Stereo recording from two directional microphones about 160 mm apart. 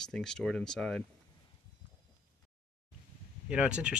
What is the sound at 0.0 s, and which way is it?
Speech, 5° left (ahead or behind).